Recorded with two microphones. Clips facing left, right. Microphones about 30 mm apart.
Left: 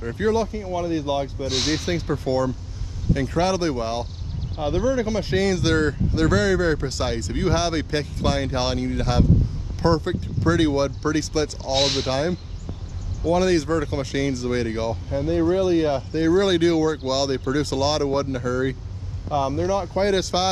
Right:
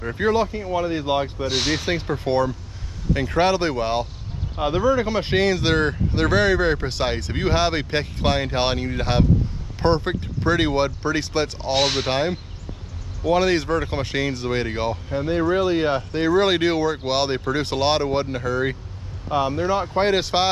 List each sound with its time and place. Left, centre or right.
0.0 s speech: right
11.7 s speech: centre
12.1 s speech: right